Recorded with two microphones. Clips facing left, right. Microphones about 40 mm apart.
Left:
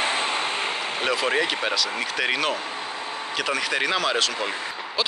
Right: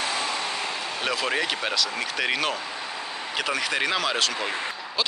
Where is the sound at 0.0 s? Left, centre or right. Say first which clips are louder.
Left 3 dB; left.